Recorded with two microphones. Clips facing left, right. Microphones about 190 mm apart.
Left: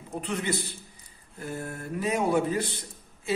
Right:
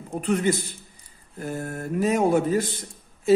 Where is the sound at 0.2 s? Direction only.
50° right (ahead or behind).